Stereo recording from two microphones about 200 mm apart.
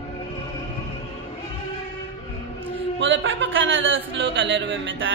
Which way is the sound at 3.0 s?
70° right (ahead or behind).